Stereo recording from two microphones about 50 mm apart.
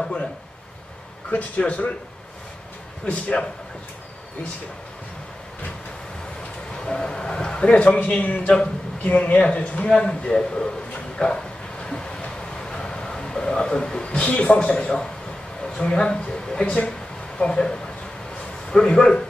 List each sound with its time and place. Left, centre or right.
1.3 s a man's voice: left
6.7 s a man's voice: centre
9.8 s a man's voice: centre
11.1 s a sound: centre
15.7 s a man's voice: left